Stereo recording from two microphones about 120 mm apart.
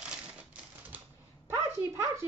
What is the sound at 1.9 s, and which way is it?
Speech, 20° right (ahead or behind).